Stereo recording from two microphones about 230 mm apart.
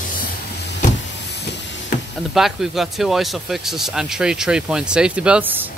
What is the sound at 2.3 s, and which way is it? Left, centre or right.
Speech, centre.